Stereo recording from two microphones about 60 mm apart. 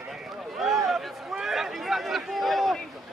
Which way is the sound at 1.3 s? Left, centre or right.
Centre.